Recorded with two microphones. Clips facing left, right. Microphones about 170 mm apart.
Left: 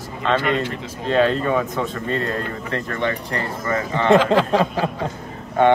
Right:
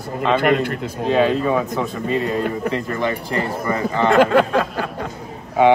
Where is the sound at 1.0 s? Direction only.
5° right (ahead or behind).